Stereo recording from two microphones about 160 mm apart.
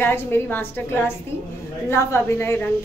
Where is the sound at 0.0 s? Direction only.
15° left (ahead or behind).